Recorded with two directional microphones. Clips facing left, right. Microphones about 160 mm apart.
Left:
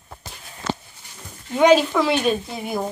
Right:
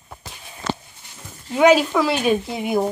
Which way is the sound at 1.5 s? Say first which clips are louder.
Even; 5° right (ahead or behind).